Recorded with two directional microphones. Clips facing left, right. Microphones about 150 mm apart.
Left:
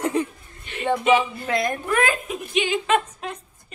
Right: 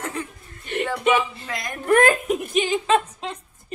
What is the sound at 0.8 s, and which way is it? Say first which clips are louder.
Speech: left 3 dB; 25° left (ahead or behind).